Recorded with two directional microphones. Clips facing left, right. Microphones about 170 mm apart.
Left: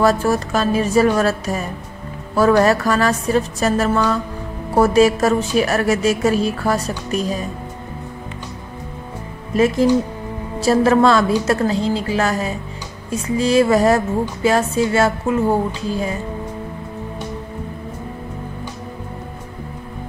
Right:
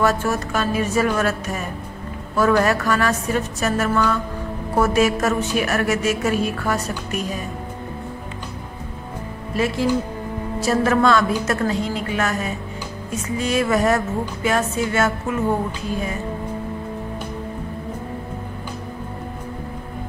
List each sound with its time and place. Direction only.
0.0 s speech: 35° left (ahead or behind)
10.6 s speech: 30° left (ahead or behind)